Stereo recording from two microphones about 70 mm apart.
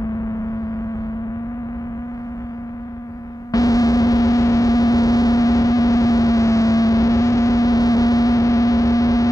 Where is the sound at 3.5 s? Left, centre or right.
Left.